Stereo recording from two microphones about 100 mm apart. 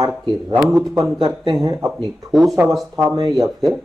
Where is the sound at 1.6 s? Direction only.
35° right (ahead or behind).